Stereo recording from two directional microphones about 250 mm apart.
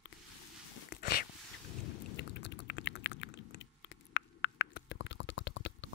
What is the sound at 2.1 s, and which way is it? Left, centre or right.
Typing, left.